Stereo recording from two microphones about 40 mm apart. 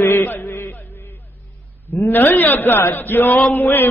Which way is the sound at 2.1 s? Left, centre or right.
Left.